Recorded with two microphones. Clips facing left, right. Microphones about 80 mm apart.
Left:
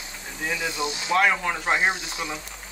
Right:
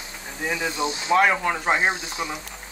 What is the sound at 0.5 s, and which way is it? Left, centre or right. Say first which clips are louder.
Speech: right 3 dB; right.